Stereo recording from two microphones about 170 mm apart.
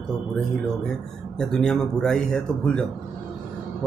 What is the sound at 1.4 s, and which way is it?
A man's voice, 5° left (ahead or behind).